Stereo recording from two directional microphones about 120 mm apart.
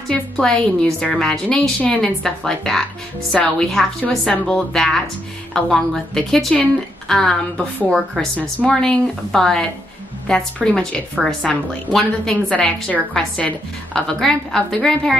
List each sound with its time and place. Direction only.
0.1 s a woman's voice: 5° left (ahead or behind)